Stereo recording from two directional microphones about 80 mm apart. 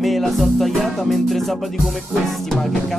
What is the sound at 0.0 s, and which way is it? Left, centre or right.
Music, centre.